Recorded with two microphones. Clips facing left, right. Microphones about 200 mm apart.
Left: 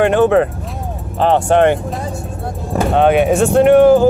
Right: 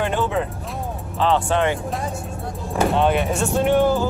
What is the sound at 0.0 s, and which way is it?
Speech, 70° left (ahead or behind).